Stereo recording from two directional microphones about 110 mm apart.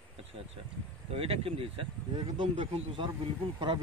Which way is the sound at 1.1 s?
60° right (ahead or behind).